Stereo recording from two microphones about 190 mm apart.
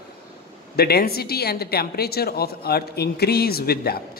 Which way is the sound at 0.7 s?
55° left (ahead or behind).